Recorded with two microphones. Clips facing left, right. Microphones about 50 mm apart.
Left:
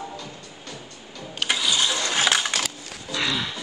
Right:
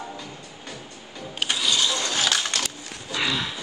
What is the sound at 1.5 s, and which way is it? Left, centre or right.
Ratchet, centre.